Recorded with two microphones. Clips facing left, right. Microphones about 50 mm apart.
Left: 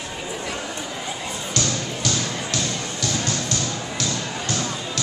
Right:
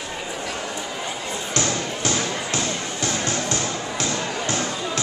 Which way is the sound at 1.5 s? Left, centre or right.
Right.